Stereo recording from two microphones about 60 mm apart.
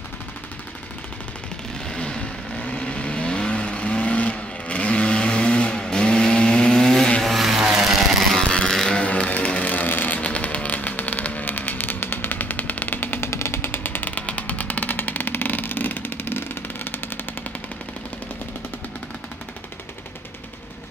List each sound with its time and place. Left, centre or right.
1.9 s vehicle: centre
7.3 s vehicle: centre
8.4 s vehicle: centre; by 13.3 s left
13.3 s vehicle: left